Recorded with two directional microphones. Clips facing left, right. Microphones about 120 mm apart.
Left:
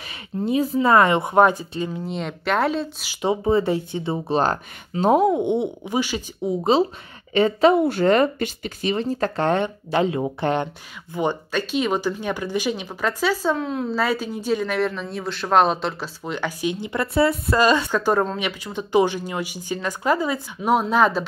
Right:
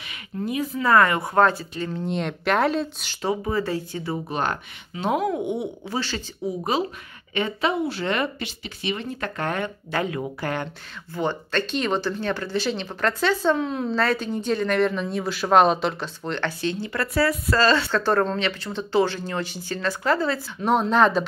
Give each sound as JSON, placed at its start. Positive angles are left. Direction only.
{"t": 0.4, "sound": "speech", "side_deg": 25}
{"t": 3.2, "sound": "speech", "side_deg": 20}
{"t": 5.3, "sound": "speech", "side_deg": 25}
{"t": 6.7, "sound": "a woman's voice", "side_deg": 25}
{"t": 7.8, "sound": "speech", "side_deg": 45}
{"t": 8.9, "sound": "speech", "side_deg": 35}